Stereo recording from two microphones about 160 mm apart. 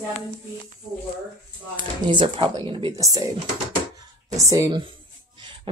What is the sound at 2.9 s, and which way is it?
Speech, 20° right (ahead or behind).